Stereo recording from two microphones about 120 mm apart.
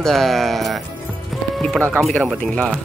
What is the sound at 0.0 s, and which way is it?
Speech, centre (ahead or behind).